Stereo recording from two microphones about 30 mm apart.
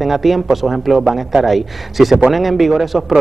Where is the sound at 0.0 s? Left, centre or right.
Centre.